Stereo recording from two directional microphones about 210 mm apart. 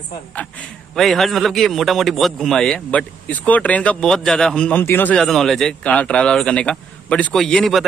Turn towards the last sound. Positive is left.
turn(degrees=0)  # may be behind; listen again after turning